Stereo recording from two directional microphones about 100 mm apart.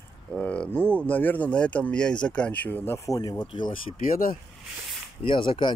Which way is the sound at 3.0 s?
35° left (ahead or behind).